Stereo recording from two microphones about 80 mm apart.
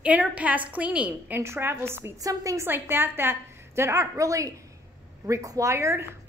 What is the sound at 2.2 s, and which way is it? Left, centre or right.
Speech, right.